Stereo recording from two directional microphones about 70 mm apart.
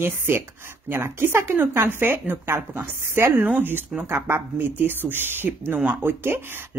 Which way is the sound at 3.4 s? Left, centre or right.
Right.